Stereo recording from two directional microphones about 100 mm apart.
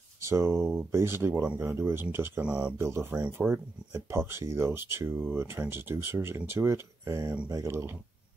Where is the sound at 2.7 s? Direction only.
25° right (ahead or behind).